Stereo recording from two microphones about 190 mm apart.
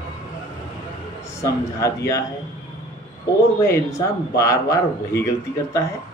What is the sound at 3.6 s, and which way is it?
Speech, 15° left (ahead or behind).